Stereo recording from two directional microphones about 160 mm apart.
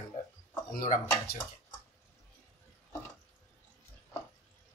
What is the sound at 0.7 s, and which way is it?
Speech, 60° left (ahead or behind).